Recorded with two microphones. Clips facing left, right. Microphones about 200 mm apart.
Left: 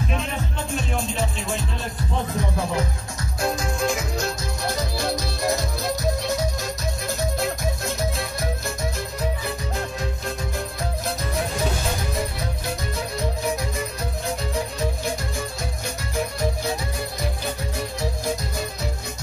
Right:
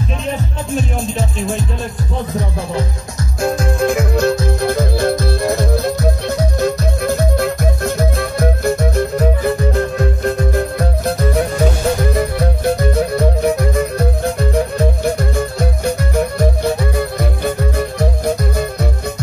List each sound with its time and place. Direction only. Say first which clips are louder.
3.5 s music: right 8 dB; 55° right (ahead or behind)
17.7 s music: right 9 dB; 60° right (ahead or behind)